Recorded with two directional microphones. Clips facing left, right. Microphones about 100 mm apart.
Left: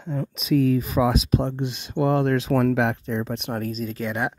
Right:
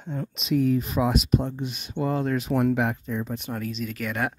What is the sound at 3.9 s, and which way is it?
Speech, 20° left (ahead or behind).